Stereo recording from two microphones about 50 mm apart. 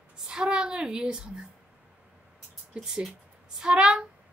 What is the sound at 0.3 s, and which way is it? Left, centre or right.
A child's voice, centre.